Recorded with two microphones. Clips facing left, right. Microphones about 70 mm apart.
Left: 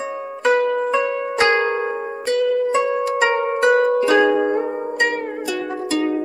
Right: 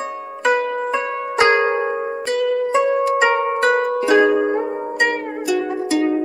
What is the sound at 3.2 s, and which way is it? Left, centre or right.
Music, right.